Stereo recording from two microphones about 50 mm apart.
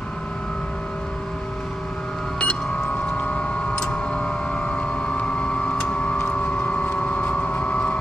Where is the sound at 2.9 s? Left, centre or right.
Left.